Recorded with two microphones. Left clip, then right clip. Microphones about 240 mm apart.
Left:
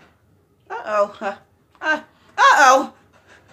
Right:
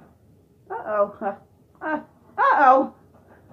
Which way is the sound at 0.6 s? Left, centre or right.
Left.